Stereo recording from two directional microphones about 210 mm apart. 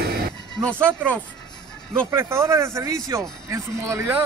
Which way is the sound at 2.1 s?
10° right (ahead or behind).